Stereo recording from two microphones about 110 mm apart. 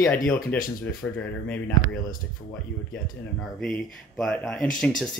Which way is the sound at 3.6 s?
10° left (ahead or behind).